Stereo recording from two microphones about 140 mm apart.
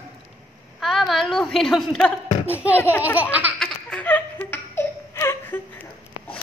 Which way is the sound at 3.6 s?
5° left (ahead or behind).